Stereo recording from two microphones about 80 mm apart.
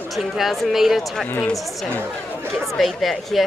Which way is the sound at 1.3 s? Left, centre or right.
Centre.